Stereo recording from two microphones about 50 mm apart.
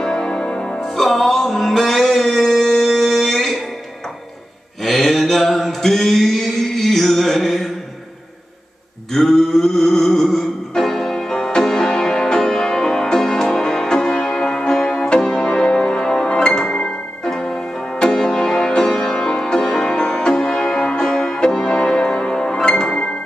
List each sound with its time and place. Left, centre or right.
0.0 s music: centre
0.7 s music: centre
4.8 s mantra: centre
9.1 s a sound: centre
10.8 s music: centre